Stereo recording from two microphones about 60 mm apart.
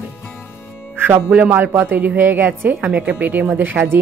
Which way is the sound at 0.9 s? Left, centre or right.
Right.